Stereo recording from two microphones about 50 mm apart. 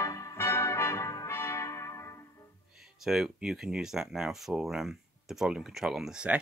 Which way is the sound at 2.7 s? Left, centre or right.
Centre.